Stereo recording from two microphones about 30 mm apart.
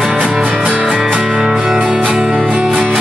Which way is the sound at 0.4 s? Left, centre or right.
Right.